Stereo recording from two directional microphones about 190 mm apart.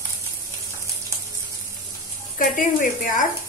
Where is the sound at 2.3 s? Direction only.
45° left (ahead or behind).